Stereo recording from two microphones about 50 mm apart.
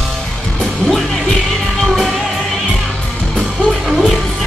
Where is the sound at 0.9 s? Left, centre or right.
Centre.